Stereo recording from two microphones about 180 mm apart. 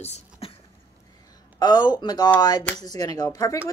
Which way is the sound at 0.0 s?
35° left (ahead or behind).